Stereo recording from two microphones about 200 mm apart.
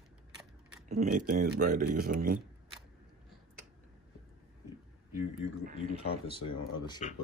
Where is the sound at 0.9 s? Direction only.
45° right (ahead or behind).